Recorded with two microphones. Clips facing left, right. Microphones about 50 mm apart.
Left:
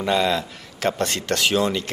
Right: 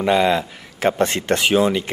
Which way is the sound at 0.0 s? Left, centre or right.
Centre.